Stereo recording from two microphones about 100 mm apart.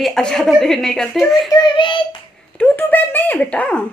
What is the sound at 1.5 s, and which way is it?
Child singing, 50° left (ahead or behind).